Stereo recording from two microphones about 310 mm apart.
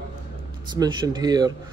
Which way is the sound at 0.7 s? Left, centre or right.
Centre.